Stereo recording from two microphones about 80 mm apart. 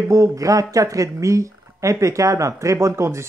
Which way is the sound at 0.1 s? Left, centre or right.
Right.